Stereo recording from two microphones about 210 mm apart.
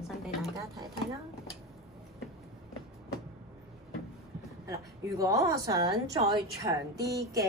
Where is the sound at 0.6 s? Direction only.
15° right (ahead or behind).